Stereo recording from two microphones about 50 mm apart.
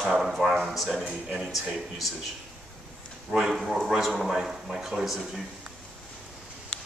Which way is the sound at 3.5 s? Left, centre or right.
Centre.